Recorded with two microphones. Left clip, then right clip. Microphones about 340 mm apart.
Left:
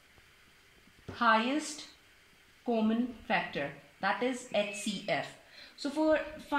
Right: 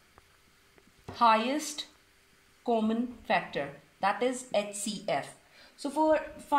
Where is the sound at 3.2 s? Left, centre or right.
Right.